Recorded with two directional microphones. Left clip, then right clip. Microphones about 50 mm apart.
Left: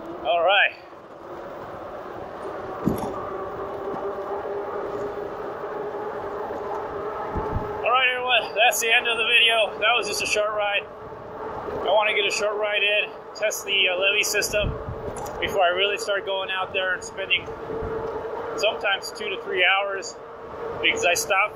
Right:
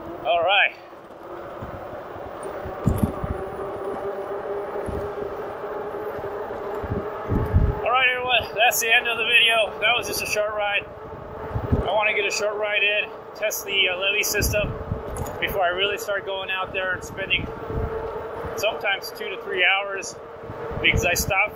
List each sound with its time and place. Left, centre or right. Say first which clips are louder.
0.2 s speech: even; centre
7.8 s speech: right 1 dB; centre
10.2 s speech: left 1 dB; left
10.5 s speech: even; centre
12.5 s speech: right 1 dB; centre
12.9 s speech: left 1 dB; left
16.3 s speech: left 1 dB; centre
18.6 s speech: left 1 dB; left
20.9 s speech: left 3 dB; left